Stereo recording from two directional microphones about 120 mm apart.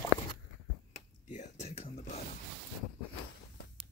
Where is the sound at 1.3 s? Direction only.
75° left (ahead or behind).